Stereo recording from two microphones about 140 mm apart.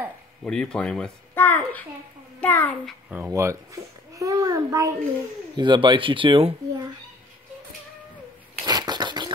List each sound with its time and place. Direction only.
0.4 s a child's voice: 5° left (ahead or behind)
3.1 s a child's voice: 15° right (ahead or behind)
5.6 s speech: 35° right (ahead or behind)
8.6 s a sound: 30° right (ahead or behind)